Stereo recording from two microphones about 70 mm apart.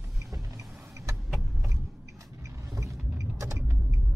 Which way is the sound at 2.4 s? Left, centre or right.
Right.